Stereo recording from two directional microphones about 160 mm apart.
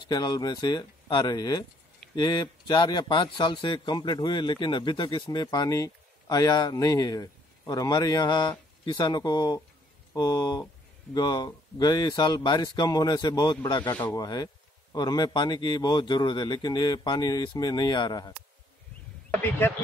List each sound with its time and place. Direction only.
0.0 s speech: 25° left (ahead or behind)